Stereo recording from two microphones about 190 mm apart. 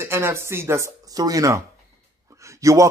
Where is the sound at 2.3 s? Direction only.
15° right (ahead or behind).